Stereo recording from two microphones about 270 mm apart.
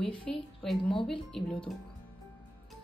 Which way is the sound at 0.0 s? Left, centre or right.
Centre.